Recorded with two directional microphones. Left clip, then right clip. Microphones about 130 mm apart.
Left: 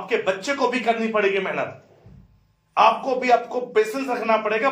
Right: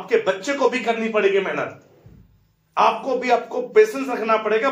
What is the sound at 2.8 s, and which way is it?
A man's voice, 30° left (ahead or behind).